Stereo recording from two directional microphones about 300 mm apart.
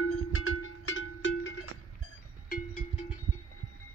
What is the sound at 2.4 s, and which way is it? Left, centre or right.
Cowbell, left.